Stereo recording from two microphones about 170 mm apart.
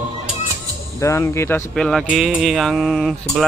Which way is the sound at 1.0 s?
15° left (ahead or behind).